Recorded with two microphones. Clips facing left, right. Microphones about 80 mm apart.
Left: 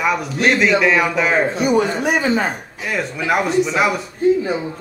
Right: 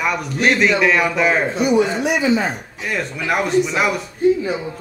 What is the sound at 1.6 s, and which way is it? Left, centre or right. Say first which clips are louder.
Speech: right 3 dB; left.